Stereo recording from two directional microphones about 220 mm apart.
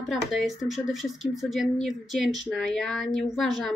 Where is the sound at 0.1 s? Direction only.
Centre (ahead or behind).